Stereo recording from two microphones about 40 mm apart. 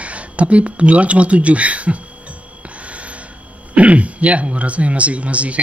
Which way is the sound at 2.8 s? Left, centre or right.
Right.